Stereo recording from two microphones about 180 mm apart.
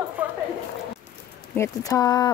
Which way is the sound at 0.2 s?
10° right (ahead or behind).